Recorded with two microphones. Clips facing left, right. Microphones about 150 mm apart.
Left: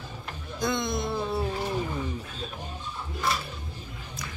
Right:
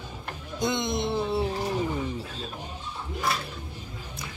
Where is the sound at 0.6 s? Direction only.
20° right (ahead or behind).